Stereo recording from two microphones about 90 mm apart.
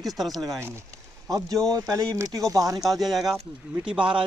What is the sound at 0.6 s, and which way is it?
Speech, 25° right (ahead or behind).